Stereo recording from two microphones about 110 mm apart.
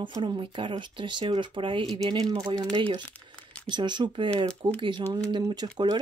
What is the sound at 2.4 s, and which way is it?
Speech, 40° right (ahead or behind).